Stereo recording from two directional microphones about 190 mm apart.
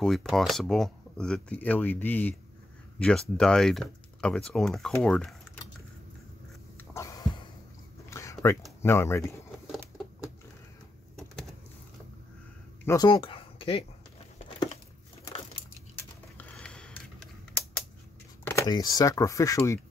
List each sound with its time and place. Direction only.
0.0 s speech: centre (ahead or behind)
6.8 s a sound: 15° left (ahead or behind)
8.8 s speech: 15° left (ahead or behind)
12.8 s speech: 20° left (ahead or behind)
16.0 s typing: 10° left (ahead or behind)
18.4 s speech: 15° left (ahead or behind)